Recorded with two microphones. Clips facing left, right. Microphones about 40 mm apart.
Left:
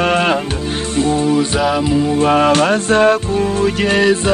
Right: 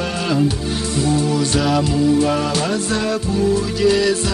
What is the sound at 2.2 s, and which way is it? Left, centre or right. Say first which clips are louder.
Music: left 6 dB; left.